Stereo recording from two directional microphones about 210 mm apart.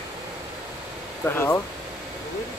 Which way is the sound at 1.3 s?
10° left (ahead or behind).